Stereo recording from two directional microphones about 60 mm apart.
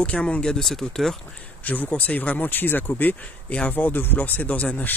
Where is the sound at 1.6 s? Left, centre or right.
Left.